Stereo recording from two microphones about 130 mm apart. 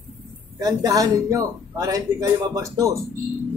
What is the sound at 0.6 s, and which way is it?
Speech, 25° right (ahead or behind).